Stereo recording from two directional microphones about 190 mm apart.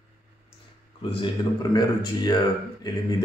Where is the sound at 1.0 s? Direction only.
25° left (ahead or behind).